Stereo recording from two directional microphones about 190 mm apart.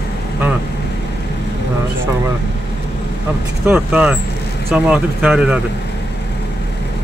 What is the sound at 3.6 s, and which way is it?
Speech, 10° right (ahead or behind).